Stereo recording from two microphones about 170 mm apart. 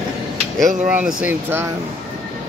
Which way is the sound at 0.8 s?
5° right (ahead or behind).